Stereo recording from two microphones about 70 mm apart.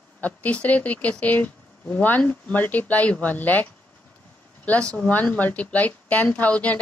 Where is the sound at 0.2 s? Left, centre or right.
Left.